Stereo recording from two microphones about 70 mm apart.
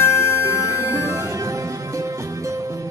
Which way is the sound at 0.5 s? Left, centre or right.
Right.